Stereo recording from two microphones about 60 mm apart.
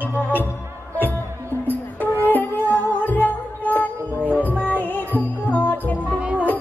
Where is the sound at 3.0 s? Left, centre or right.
Left.